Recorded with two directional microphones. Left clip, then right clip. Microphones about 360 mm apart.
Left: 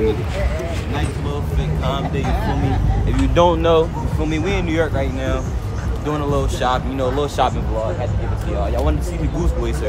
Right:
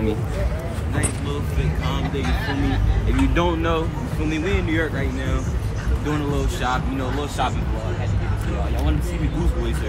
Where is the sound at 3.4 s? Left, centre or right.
Centre.